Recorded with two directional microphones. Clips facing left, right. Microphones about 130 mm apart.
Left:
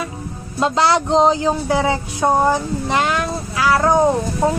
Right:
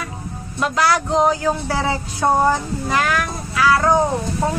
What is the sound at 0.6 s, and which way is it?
Speech, 25° left (ahead or behind).